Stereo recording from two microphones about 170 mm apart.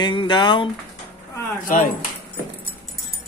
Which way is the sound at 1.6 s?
50° left (ahead or behind).